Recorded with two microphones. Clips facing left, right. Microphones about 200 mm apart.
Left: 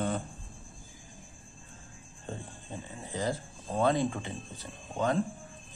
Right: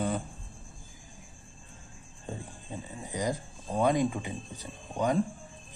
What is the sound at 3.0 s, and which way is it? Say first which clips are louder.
Speech: right 1 dB; 15° right (ahead or behind).